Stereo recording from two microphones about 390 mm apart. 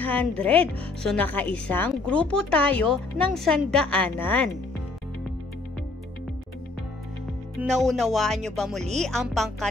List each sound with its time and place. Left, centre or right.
0.0 s speech: centre
7.7 s speech: centre